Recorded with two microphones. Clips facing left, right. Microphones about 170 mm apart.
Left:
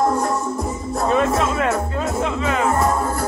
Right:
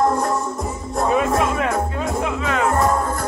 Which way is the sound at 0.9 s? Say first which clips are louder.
Even; centre (ahead or behind).